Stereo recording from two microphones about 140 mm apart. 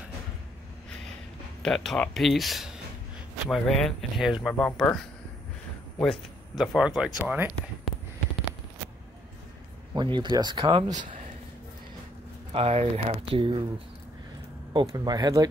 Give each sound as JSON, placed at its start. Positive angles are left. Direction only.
{"t": 1.6, "sound": "speech", "side_deg": 0}
{"t": 5.9, "sound": "speech", "side_deg": 5}
{"t": 9.9, "sound": "speech", "side_deg": -35}
{"t": 12.5, "sound": "speech", "side_deg": -45}
{"t": 14.7, "sound": "speech", "side_deg": -30}